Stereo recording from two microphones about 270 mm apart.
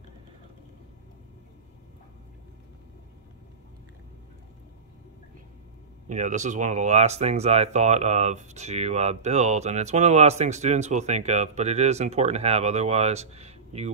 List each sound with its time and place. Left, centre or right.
6.0 s speech: right